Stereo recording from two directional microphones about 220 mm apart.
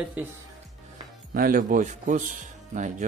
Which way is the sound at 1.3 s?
40° right (ahead or behind).